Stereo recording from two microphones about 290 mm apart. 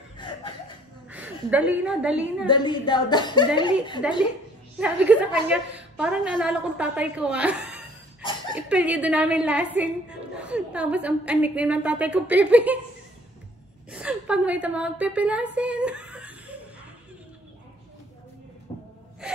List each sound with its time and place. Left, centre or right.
1.1 s a woman's voice: centre
2.4 s a woman's voice: centre
4.0 s a woman's voice: centre
8.2 s dog: centre
8.6 s a woman's voice: centre
13.8 s a woman's voice: centre